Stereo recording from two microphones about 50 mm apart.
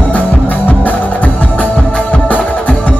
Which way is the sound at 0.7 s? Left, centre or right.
Left.